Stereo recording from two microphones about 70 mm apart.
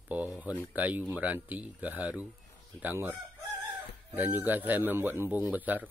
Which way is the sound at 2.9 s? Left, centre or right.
Right.